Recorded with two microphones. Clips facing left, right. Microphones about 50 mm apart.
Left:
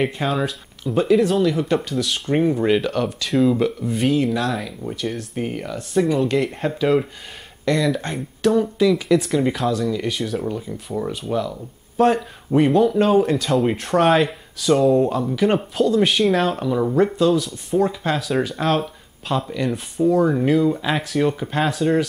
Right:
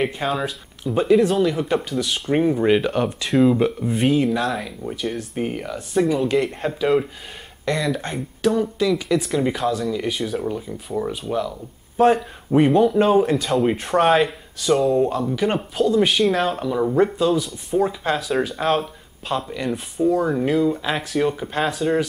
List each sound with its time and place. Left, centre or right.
0.0 s speech: centre
4.1 s speech: centre